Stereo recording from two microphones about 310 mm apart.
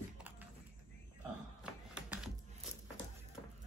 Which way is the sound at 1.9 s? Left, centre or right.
Centre.